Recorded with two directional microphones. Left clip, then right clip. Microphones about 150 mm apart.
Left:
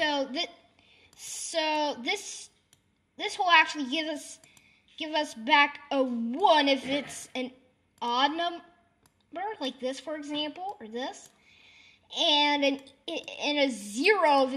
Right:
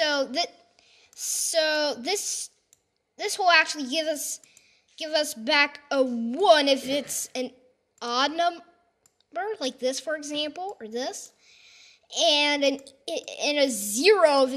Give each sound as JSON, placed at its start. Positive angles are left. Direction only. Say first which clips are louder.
{"t": 0.0, "sound": "a woman's voice", "louder": "right 4 dB", "side_deg": -30}